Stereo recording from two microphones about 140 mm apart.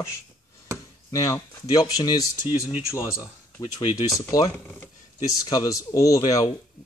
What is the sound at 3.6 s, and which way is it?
Speech, 40° left (ahead or behind).